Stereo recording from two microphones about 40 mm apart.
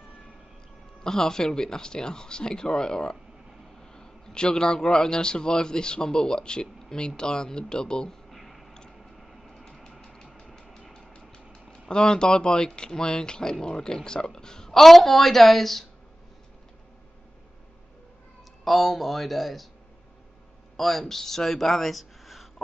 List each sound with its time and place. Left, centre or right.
1.0 s a man's voice: centre
8.3 s a sound: centre
11.9 s speech: left; by 15.8 s centre
18.6 s speech: centre
20.7 s speech: centre